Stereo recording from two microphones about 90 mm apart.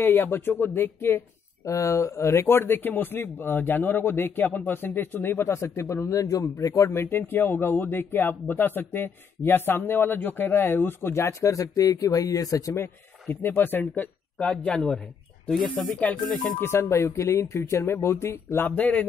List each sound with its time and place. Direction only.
0.0 s a man's voice: 25° left (ahead or behind)
16.0 s speech: 20° left (ahead or behind)
18.8 s a man's voice: 20° left (ahead or behind)